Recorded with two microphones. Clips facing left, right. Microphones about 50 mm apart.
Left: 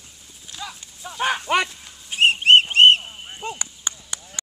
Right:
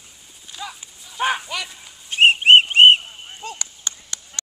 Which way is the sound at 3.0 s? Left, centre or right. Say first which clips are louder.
Left 1 dB; centre.